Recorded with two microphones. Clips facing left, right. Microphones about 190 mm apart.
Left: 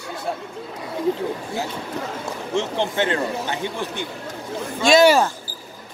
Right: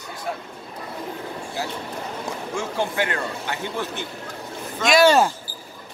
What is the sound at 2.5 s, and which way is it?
Speech, 20° left (ahead or behind).